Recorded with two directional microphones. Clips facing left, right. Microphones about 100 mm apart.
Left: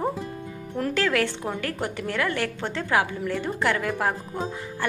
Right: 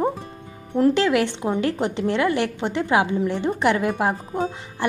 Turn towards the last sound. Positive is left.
turn(degrees=-20)  # may be behind; listen again after turning